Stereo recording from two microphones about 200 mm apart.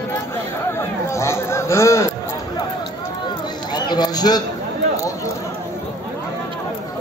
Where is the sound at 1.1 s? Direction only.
15° left (ahead or behind).